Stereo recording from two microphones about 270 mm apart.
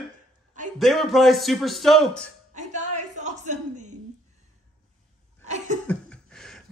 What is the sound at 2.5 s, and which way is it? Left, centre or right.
Music, right.